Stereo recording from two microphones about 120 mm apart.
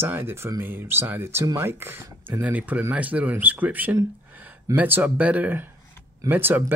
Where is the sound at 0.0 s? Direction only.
20° right (ahead or behind).